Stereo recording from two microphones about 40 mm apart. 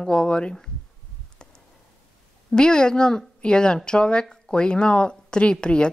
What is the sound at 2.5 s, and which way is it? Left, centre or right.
Speech, centre.